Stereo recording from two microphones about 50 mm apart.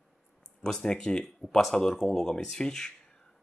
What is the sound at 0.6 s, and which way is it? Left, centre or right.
Speech, centre.